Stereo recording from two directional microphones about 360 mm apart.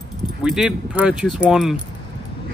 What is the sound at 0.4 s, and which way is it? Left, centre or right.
Speech, centre.